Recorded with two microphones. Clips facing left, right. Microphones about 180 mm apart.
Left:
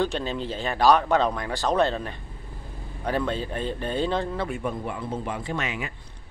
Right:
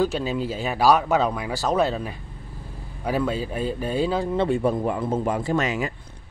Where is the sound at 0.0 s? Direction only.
5° right (ahead or behind).